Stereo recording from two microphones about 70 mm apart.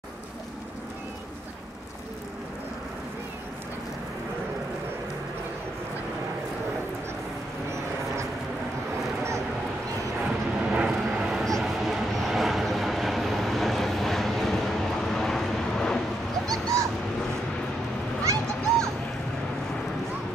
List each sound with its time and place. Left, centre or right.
10.7 s vehicle: centre
11.4 s vehicle: centre
16.4 s dog: right
18.2 s a sound: right